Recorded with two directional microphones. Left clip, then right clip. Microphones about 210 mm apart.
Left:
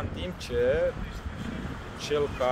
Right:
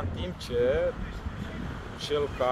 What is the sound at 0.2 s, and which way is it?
Speech, 5° right (ahead or behind).